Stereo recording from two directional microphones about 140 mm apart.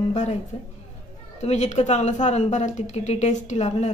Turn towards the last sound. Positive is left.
turn(degrees=50)  # may be behind; listen again after turning